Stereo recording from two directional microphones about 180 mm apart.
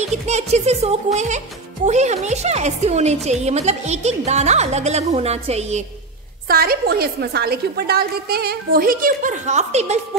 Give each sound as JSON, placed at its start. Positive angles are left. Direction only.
{"t": 0.0, "sound": "a woman's voice", "side_deg": -40}
{"t": 6.4, "sound": "a woman's voice", "side_deg": -55}